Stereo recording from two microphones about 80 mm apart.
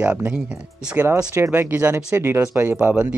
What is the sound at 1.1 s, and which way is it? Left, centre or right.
Speech, right.